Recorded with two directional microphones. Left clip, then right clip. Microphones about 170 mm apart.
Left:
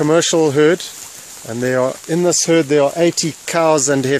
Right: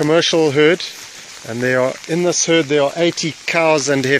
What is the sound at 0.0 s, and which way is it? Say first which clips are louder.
Speech: even; 15° left (ahead or behind).